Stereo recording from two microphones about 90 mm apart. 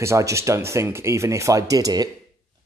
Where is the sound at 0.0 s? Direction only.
30° right (ahead or behind).